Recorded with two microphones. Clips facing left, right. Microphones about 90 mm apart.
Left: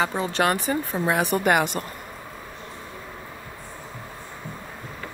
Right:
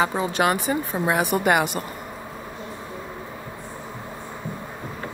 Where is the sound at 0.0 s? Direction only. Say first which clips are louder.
Right 2 dB; 10° right (ahead or behind).